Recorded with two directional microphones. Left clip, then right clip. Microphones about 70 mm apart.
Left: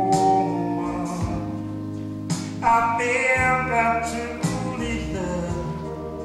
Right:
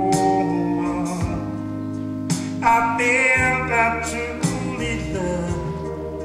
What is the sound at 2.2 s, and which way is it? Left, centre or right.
Music, right.